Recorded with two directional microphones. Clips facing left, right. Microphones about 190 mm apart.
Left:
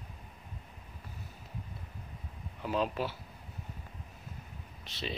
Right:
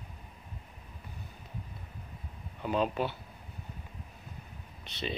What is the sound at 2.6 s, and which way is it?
Speech, centre (ahead or behind).